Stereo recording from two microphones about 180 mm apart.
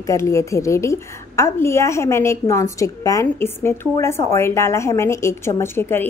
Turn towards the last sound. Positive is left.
turn(degrees=15)  # may be behind; listen again after turning